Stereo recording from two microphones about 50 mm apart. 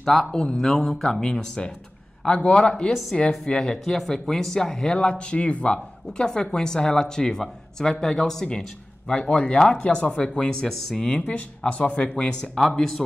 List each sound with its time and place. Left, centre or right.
0.0 s speech: centre
2.9 s speech: centre
3.2 s speech: centre
9.8 s speech: left
10.7 s speech: centre
11.1 s speech: left
12.5 s speech: centre